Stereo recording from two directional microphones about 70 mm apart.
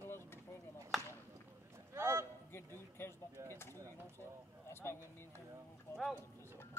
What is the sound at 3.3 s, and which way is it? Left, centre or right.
Speech, right.